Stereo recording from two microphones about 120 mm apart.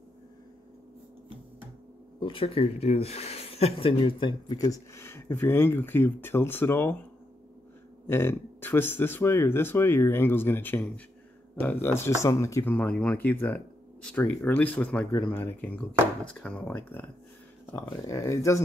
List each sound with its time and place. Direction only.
2.1 s speech: 45° left (ahead or behind); by 7.0 s 20° left (ahead or behind)
8.1 s speech: 20° left (ahead or behind)
12.7 s speech: 10° left (ahead or behind)
17.8 s speech: 25° left (ahead or behind)